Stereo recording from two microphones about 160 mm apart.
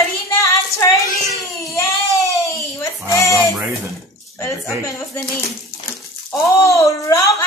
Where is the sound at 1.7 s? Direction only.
20° left (ahead or behind).